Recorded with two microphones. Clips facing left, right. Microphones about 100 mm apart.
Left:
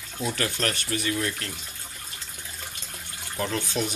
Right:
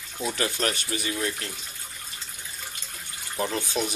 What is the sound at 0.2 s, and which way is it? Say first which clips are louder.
Speech: right 1 dB; 10° right (ahead or behind).